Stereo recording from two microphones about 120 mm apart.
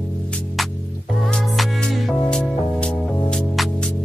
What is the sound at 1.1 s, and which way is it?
Music, 5° left (ahead or behind).